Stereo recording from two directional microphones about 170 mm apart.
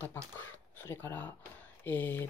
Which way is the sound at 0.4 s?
15° left (ahead or behind).